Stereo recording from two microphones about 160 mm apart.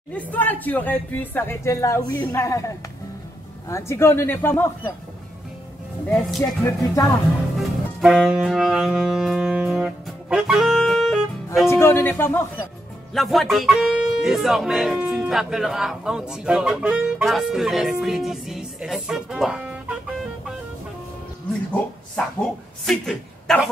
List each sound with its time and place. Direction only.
0.1 s speech: 10° left (ahead or behind)
6.1 s speech: 5° left (ahead or behind)
8.0 s saxophone: 5° right (ahead or behind)
11.6 s speech: 15° left (ahead or behind)
13.1 s speech: centre (ahead or behind)
22.1 s speech: 5° left (ahead or behind)